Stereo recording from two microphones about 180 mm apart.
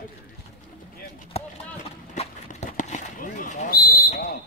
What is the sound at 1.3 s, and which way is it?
Clip-clop, 35° left (ahead or behind).